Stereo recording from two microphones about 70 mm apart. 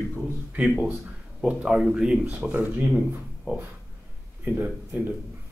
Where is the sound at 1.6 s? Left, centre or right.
Centre.